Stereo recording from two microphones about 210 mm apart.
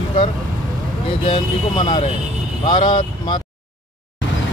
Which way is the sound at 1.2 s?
25° left (ahead or behind).